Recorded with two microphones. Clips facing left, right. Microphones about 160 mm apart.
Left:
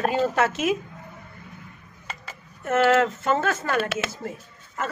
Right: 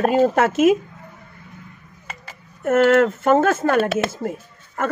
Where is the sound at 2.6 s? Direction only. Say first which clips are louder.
Right 5 dB; 50° right (ahead or behind).